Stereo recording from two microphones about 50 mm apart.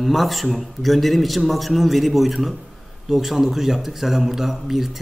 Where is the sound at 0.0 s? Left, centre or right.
Centre.